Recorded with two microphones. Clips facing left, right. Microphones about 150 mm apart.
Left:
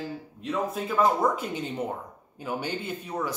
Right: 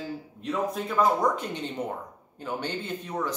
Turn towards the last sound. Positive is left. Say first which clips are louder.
# even
turn(degrees=10)  # may be behind; listen again after turning